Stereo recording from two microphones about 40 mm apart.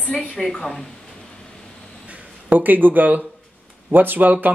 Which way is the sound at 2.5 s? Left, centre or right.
Right.